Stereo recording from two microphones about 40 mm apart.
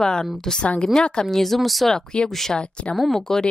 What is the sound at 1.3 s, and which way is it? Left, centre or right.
Speech, centre.